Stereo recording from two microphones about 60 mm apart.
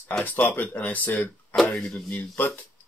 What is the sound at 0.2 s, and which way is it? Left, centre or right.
Speech, left.